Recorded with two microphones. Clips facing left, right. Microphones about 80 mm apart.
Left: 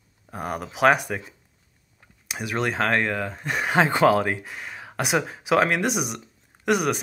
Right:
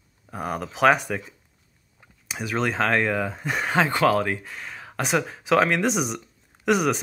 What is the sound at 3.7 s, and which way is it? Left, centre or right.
Speech, centre.